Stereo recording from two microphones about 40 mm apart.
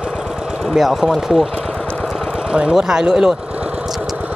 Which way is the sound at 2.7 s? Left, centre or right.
Centre.